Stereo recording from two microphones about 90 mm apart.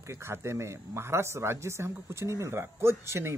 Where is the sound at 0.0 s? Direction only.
30° right (ahead or behind).